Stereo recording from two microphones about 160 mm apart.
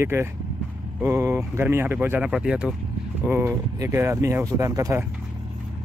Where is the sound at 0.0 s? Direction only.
15° right (ahead or behind).